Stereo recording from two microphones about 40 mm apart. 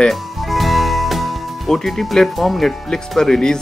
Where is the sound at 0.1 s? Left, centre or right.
Centre.